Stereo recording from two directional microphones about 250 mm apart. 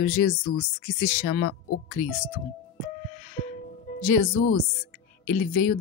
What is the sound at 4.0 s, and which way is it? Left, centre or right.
Speech, left.